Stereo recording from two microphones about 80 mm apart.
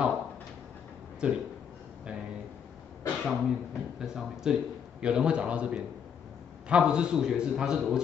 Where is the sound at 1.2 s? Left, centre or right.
Centre.